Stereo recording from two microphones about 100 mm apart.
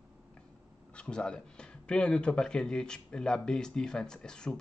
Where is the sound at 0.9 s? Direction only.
10° left (ahead or behind).